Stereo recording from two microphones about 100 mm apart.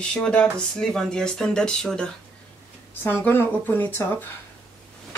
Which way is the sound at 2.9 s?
20° left (ahead or behind).